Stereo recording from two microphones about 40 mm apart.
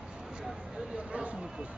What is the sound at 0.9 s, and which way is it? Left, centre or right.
Speech, right.